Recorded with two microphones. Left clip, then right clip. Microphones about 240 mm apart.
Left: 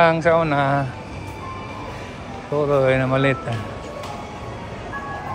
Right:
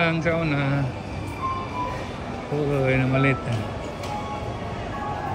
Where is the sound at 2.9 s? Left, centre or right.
Centre.